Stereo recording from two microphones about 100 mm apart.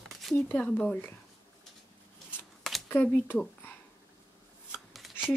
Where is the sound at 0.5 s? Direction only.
10° left (ahead or behind).